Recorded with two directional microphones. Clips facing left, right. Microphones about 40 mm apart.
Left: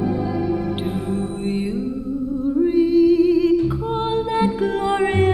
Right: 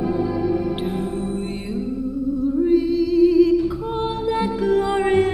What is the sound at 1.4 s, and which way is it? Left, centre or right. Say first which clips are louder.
Music: left 5 dB; centre.